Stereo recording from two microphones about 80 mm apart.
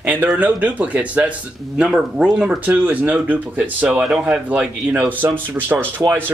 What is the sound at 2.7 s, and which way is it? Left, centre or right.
Speech, right.